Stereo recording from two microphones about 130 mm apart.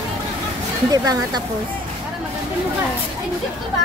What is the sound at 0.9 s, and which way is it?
Speech, 30° right (ahead or behind).